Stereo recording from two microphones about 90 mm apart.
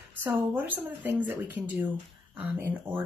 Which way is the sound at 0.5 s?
20° right (ahead or behind).